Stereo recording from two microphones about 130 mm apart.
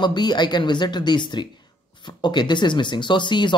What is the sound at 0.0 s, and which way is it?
Speech, 35° left (ahead or behind).